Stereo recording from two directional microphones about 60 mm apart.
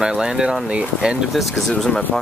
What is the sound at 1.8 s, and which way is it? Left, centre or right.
Speech, centre.